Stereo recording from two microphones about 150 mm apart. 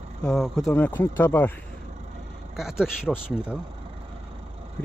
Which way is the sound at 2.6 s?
5° right (ahead or behind).